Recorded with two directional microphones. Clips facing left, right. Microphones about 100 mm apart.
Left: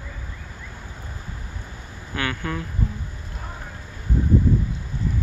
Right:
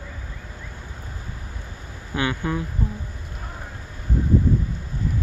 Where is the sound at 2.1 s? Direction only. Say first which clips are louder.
Right 3 dB; 20° right (ahead or behind).